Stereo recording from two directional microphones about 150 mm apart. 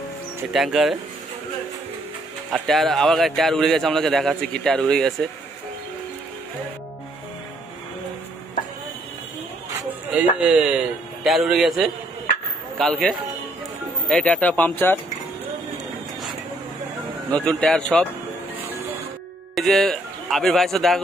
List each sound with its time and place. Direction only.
0.5 s speech: centre (ahead or behind)
2.5 s speech: centre (ahead or behind)
10.1 s a man's voice: 5° right (ahead or behind); by 15.0 s 15° left (ahead or behind)
17.3 s speech: 5° left (ahead or behind)
19.5 s speech: centre (ahead or behind)